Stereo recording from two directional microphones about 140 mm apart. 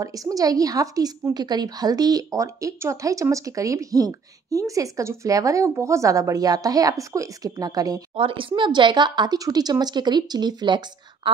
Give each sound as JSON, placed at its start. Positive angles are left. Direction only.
{"t": 0.0, "sound": "a woman's voice", "side_deg": -25}
{"t": 8.2, "sound": "speech", "side_deg": -40}